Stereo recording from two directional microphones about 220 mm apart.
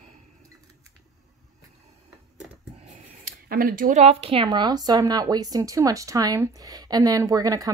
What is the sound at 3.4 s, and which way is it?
A woman's voice, 40° right (ahead or behind).